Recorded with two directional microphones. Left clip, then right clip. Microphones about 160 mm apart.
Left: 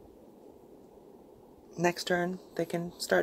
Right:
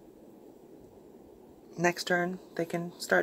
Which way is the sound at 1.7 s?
5° left (ahead or behind).